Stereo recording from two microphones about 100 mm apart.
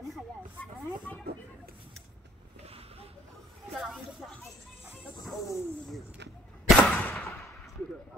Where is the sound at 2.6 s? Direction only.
80° right.